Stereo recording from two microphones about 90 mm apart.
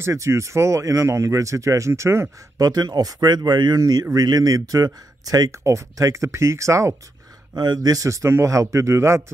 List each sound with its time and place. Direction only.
0.0 s speech: 35° right (ahead or behind)
7.5 s speech: 50° right (ahead or behind); by 9.2 s 30° right (ahead or behind)